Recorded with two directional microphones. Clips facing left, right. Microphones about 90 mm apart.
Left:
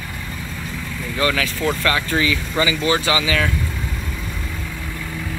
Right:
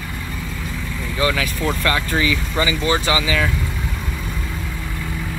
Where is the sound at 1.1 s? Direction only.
15° right (ahead or behind).